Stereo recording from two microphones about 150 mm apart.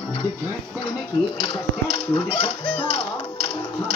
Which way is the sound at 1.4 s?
35° left (ahead or behind).